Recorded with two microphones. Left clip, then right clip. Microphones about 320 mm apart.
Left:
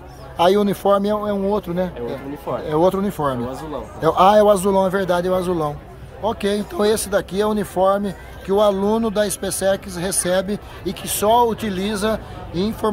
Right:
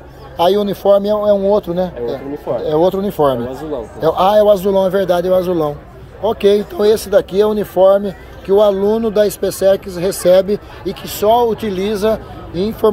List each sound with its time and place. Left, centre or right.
0.4 s speech: centre
1.1 s speech: left
1.5 s speech: centre